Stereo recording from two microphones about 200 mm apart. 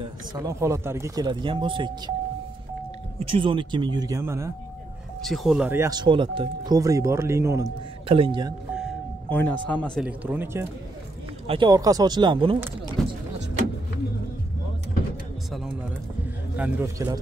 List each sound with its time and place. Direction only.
0.0 s speech: 15° right (ahead or behind)
3.2 s speech: 25° right (ahead or behind)
5.2 s speech: centre (ahead or behind); by 8.5 s 20° right (ahead or behind)
9.3 s speech: 10° left (ahead or behind)
10.0 s speech: 10° right (ahead or behind)
11.4 s speech: 25° right (ahead or behind)
16.5 s speech: 10° right (ahead or behind)